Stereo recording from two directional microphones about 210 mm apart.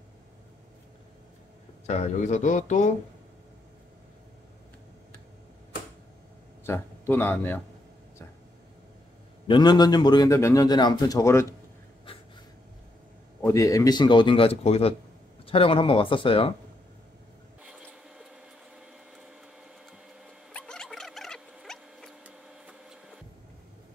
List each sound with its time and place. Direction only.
1.9 s speech: 35° left (ahead or behind)
6.6 s speech: 10° left (ahead or behind)
9.5 s a man's voice: 20° left (ahead or behind)
13.4 s a man's voice: 15° left (ahead or behind)
17.6 s printer: 5° right (ahead or behind)
19.9 s a sound: 5° left (ahead or behind)